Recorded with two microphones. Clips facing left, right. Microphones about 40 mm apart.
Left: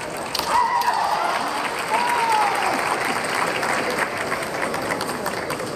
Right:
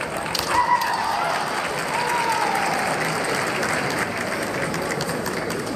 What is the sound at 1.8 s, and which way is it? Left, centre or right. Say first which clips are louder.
Applause: left 4 dB; centre.